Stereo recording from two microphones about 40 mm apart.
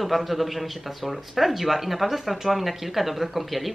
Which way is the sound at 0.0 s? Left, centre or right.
Centre.